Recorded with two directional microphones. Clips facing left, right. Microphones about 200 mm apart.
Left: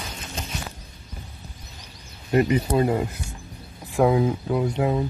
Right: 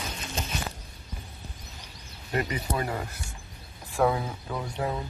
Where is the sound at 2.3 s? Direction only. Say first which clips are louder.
Left 9 dB; 20° left (ahead or behind).